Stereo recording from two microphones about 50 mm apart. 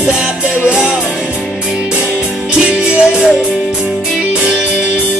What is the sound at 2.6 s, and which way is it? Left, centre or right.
Music, centre.